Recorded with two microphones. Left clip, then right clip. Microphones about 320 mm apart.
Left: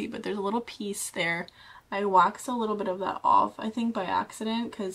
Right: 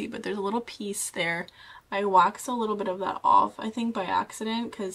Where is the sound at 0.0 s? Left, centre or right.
Centre.